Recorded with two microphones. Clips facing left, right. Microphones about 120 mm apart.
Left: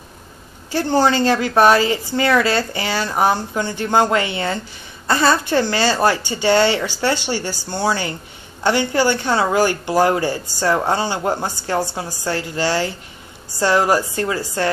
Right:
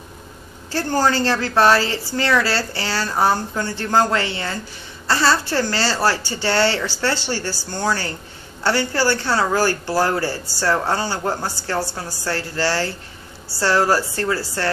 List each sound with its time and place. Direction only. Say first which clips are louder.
0.7 s speech: left 3 dB; 15° left (ahead or behind)